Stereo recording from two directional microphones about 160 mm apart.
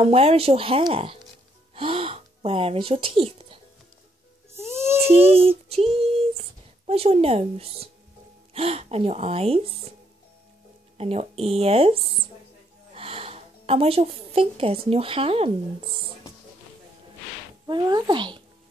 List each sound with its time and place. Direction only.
0.0 s speech: 40° right (ahead or behind)
4.6 s music: 15° right (ahead or behind)
5.0 s speech: 40° right (ahead or behind)
11.0 s a woman's voice: 40° right (ahead or behind)
17.6 s a child's voice: 25° right (ahead or behind)